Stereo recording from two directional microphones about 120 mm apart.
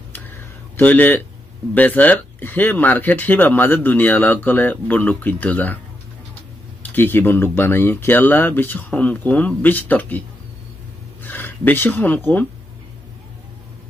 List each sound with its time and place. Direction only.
0.1 s a sound: 15° left (ahead or behind)
1.7 s speech: 15° left (ahead or behind)
7.0 s speech: 15° left (ahead or behind)
11.2 s speech: 15° left (ahead or behind)